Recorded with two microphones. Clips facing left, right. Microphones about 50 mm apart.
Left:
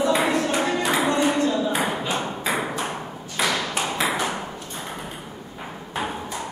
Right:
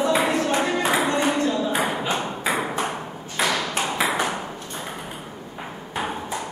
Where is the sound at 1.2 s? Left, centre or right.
Centre.